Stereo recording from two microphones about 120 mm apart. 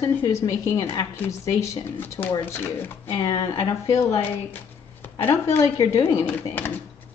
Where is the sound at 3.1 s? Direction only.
35° left (ahead or behind); by 6.7 s 15° left (ahead or behind).